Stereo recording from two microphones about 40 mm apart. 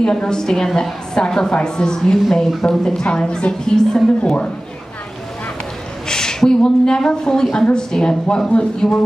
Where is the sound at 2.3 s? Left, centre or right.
Centre.